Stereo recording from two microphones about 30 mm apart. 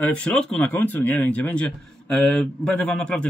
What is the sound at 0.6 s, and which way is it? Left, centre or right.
Speech, left.